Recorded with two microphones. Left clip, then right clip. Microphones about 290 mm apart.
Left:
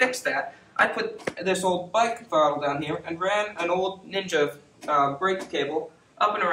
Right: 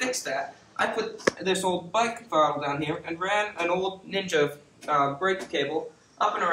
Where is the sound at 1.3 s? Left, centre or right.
Centre.